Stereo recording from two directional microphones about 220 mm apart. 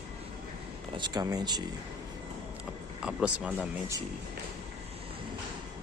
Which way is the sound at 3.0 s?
5° right (ahead or behind).